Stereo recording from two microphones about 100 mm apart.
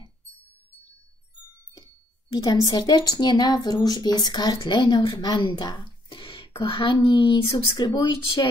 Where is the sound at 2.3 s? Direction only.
40° left (ahead or behind); by 5.2 s 55° left (ahead or behind).